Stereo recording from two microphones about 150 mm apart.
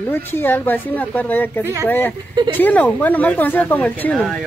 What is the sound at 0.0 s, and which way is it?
Speech, 15° left (ahead or behind).